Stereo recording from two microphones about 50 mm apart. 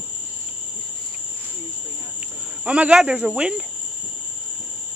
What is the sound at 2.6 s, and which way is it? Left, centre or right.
Speech, right.